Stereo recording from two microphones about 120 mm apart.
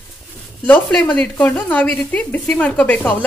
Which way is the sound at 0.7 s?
10° left (ahead or behind).